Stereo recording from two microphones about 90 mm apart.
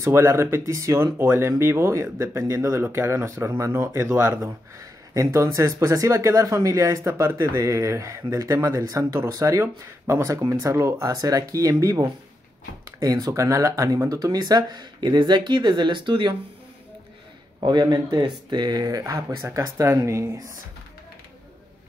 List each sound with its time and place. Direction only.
0.0 s speech: 35° right (ahead or behind)
4.4 s speech: 40° right (ahead or behind); by 16.3 s 60° right (ahead or behind)
17.6 s speech: 50° right (ahead or behind); by 20.2 s 35° right (ahead or behind)